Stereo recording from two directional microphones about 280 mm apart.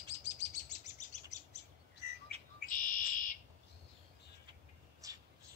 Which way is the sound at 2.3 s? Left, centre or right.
Right.